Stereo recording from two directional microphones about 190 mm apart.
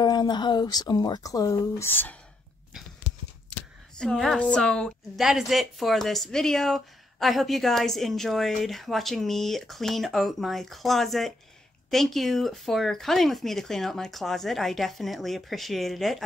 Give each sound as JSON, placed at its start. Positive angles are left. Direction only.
{"t": 0.0, "sound": "speech", "side_deg": 20}
{"t": 4.0, "sound": "a woman's voice", "side_deg": 5}